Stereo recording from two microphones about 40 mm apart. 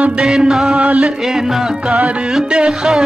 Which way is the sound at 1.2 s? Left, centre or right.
Centre.